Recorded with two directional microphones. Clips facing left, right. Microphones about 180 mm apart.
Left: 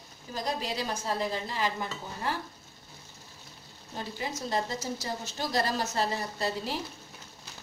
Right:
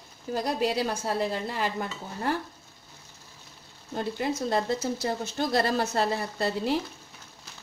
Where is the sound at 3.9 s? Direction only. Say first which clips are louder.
Right 7 dB; 55° right (ahead or behind).